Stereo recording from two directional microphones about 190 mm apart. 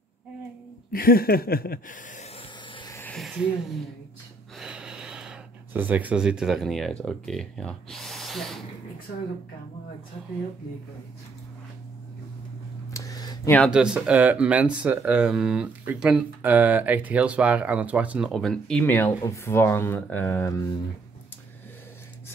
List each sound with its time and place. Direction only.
0.9 s speech: 50° left (ahead or behind)
2.7 s vehicle: 25° left (ahead or behind)
3.0 s a sound: 5° left (ahead or behind)
4.6 s speech: 5° right (ahead or behind)
12.9 s a sound: 20° left (ahead or behind)
13.7 s speech: 5° right (ahead or behind); by 20.6 s 15° left (ahead or behind)